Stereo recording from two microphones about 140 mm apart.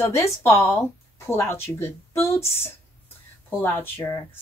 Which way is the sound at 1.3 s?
20° left (ahead or behind).